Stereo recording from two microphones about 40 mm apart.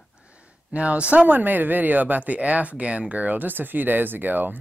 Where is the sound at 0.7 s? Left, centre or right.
Right.